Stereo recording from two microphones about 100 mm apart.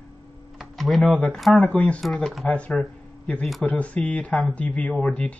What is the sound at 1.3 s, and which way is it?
Speech, centre (ahead or behind).